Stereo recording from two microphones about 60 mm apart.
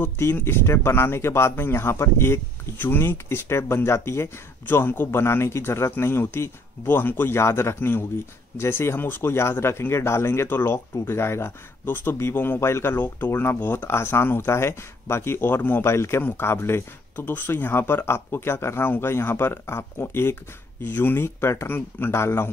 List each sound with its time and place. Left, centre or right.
0.0 s speech: left
7.3 s speech: left
12.9 s speech: left
15.8 s speech: left